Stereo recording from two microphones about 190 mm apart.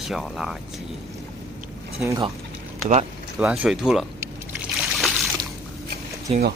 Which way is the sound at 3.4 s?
5° right (ahead or behind).